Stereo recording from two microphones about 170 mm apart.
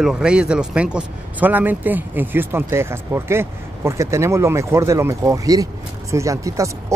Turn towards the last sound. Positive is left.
turn(degrees=-20)  # may be behind; listen again after turning